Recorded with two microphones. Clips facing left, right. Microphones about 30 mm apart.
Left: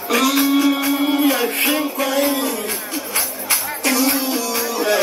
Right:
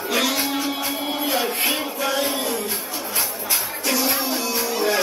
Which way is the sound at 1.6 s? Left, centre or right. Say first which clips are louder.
Left 4 dB; left.